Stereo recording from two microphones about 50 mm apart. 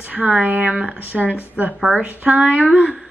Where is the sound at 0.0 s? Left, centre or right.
Right.